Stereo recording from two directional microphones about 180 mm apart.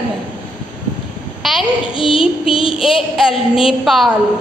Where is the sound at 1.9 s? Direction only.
30° left (ahead or behind).